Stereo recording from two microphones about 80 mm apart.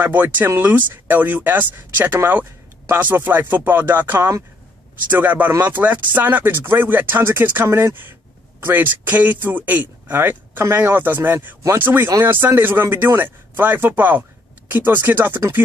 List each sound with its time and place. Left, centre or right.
0.0 s speech: right